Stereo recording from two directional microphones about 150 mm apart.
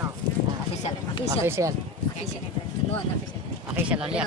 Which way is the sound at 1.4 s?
15° right (ahead or behind).